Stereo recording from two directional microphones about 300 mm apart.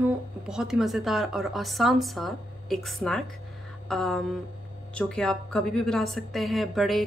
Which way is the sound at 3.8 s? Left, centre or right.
Centre.